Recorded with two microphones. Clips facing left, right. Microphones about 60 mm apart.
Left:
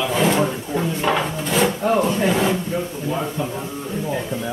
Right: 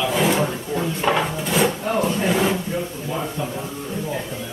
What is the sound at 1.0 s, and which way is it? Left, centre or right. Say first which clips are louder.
Wood: right 2 dB; centre.